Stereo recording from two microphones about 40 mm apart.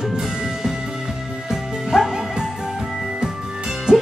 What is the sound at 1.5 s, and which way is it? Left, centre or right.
Music, centre.